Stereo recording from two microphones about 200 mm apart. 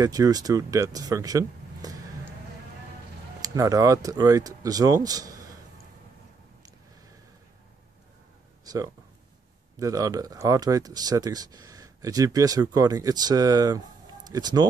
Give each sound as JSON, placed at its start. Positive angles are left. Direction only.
{"t": 0.0, "sound": "speech", "side_deg": -15}
{"t": 3.4, "sound": "speech", "side_deg": -20}
{"t": 8.6, "sound": "a sound", "side_deg": -15}
{"t": 9.8, "sound": "speech", "side_deg": -15}